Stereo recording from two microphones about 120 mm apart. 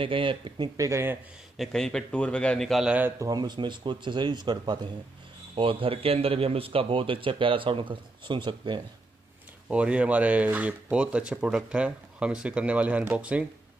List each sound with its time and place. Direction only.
0.0 s a man's voice: 45° right (ahead or behind)
0.7 s speech: 25° right (ahead or behind)
1.6 s a man's voice: 5° left (ahead or behind)
3.2 s a man's voice: 35° right (ahead or behind)
9.7 s speech: 10° right (ahead or behind)